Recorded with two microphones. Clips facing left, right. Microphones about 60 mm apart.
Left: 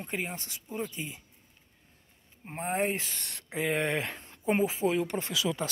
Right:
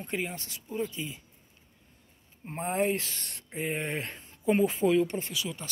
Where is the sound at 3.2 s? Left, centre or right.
Left.